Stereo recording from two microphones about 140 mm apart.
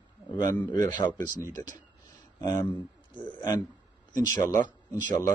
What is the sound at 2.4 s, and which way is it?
Speech, 20° left (ahead or behind).